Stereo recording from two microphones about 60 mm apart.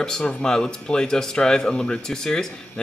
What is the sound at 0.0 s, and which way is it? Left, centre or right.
Speech, centre.